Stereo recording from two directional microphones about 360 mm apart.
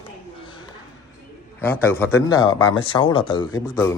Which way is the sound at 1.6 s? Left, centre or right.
Centre.